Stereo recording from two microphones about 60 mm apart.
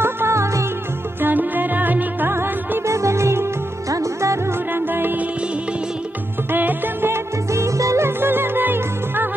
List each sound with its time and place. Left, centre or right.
0.0 s music: right
1.2 s music: right
2.9 s music: right
4.7 s music: right
6.5 s music: right
7.5 s music: right
8.2 s music: right